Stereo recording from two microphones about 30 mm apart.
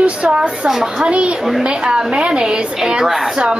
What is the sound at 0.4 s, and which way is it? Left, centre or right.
Speech, centre.